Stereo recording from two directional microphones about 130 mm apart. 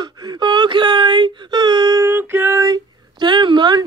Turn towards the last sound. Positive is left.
turn(degrees=-35)  # may be behind; listen again after turning